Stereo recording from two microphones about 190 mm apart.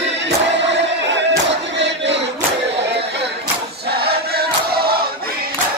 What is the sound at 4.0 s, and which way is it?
Chant, 55° right (ahead or behind).